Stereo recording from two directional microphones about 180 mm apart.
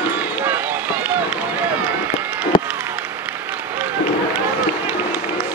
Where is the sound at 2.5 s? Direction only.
25° left (ahead or behind).